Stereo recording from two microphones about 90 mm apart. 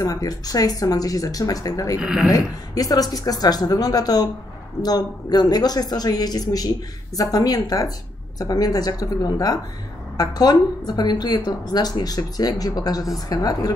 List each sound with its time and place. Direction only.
0.0 s a woman's voice: 40° left (ahead or behind)
2.0 s speech: 5° right (ahead or behind)
2.3 s a woman's voice: 45° left (ahead or behind)